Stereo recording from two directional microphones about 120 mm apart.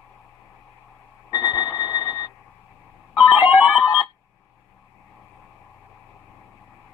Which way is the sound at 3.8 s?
30° left (ahead or behind).